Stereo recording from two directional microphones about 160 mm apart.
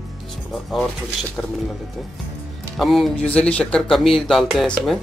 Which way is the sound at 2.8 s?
Centre (ahead or behind).